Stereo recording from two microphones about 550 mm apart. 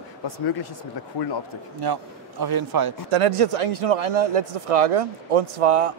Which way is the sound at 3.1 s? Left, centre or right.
Right.